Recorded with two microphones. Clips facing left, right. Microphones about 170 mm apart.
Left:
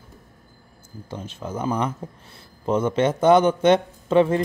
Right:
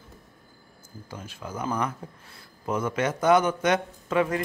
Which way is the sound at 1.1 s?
25° left (ahead or behind).